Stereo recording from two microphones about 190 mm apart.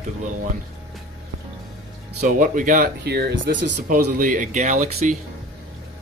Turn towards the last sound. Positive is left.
turn(degrees=-40)  # may be behind; listen again after turning